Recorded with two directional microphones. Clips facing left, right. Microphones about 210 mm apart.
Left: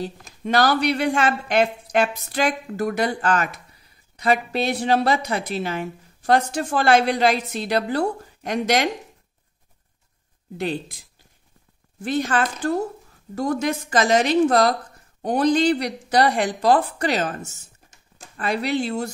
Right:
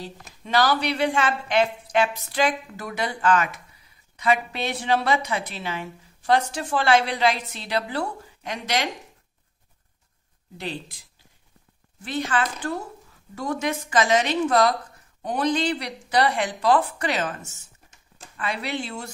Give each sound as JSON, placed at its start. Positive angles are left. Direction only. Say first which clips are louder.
{"t": 0.4, "sound": "a woman's voice", "louder": "left 3 dB", "side_deg": 50}
{"t": 10.6, "sound": "a woman's voice", "louder": "left 7 dB", "side_deg": 50}
{"t": 12.0, "sound": "a woman's voice", "louder": "left 4 dB", "side_deg": 45}
{"t": 18.4, "sound": "speech", "louder": "left 6 dB", "side_deg": 40}